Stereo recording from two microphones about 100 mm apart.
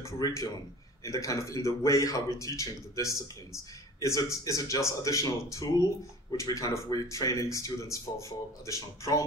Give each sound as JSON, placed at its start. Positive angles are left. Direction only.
{"t": 0.0, "sound": "a man's voice", "side_deg": 35}